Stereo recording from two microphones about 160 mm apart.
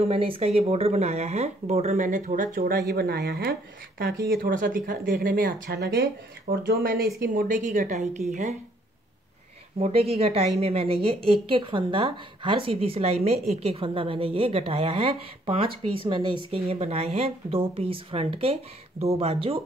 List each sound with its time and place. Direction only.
0.0 s speech: 35° right (ahead or behind); by 2.8 s 55° right (ahead or behind)
2.9 s speech: 80° right
4.3 s speech: 60° right (ahead or behind); by 7.1 s 80° right
7.2 s a woman's voice: 60° right (ahead or behind)
9.8 s speech: 40° right (ahead or behind)